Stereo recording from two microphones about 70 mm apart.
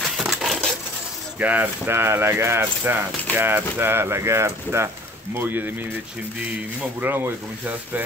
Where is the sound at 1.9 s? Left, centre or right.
Right.